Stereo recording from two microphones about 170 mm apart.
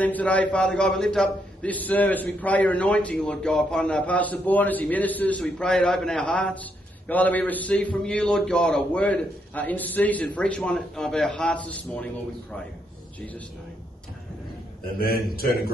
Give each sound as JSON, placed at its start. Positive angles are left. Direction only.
{"t": 0.0, "sound": "a man's voice", "side_deg": 10}
{"t": 15.0, "sound": "a man's voice", "side_deg": 60}